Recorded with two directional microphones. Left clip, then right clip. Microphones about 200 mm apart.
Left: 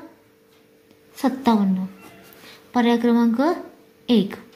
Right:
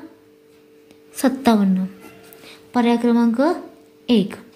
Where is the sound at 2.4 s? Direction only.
15° right (ahead or behind).